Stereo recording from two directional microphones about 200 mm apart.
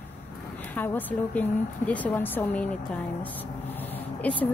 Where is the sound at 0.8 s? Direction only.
10° left (ahead or behind).